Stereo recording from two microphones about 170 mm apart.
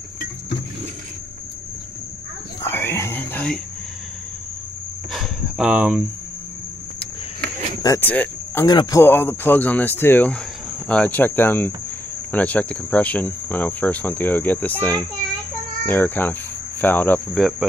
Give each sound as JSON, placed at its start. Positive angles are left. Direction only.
{"t": 2.6, "sound": "whispering", "side_deg": 15}
{"t": 5.1, "sound": "cricket", "side_deg": -5}
{"t": 7.8, "sound": "speech", "side_deg": 15}
{"t": 8.6, "sound": "speech", "side_deg": 20}
{"t": 17.3, "sound": "cricket", "side_deg": 0}